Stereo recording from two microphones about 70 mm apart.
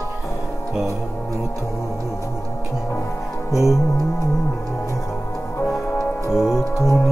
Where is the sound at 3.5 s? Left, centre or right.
Left.